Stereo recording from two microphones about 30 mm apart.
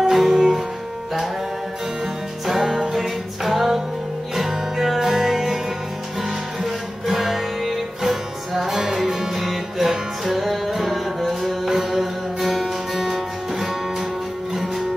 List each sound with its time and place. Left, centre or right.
0.1 s music: centre
2.6 s music: centre
3.0 s a capella: centre
4.4 s music: centre
6.6 s music: centre